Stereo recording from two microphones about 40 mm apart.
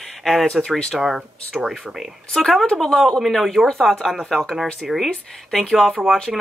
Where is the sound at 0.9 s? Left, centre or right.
Centre.